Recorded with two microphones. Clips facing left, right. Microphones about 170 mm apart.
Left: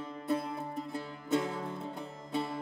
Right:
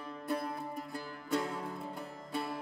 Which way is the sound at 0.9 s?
20° left (ahead or behind).